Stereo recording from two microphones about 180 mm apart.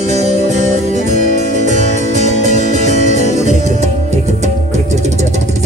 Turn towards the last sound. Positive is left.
turn(degrees=-40)  # may be behind; listen again after turning